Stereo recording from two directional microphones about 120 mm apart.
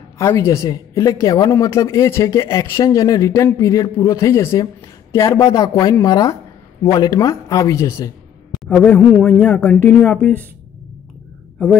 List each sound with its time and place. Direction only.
0.2 s a woman's voice: 20° left (ahead or behind)
8.6 s a man's voice: 10° left (ahead or behind)